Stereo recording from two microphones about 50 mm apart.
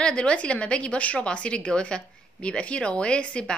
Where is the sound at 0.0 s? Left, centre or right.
Centre.